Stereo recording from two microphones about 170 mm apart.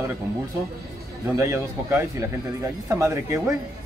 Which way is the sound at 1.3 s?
15° right (ahead or behind).